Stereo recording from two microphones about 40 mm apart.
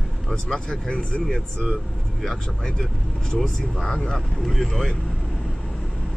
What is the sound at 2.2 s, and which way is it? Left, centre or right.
Speech, centre.